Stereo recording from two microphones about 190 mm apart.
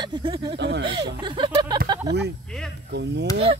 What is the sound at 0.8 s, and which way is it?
Speech, 25° right (ahead or behind).